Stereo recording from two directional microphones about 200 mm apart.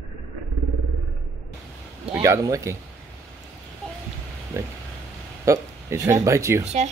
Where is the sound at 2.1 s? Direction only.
15° right (ahead or behind).